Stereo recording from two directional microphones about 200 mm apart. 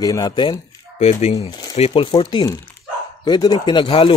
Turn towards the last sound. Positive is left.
turn(degrees=25)  # may be behind; listen again after turning